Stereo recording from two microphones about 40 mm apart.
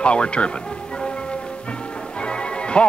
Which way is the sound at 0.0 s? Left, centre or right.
Left.